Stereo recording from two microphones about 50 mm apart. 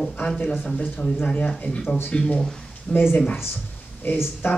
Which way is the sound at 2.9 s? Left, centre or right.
Left.